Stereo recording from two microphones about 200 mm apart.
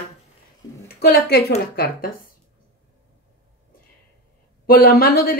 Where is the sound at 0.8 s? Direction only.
50° left (ahead or behind).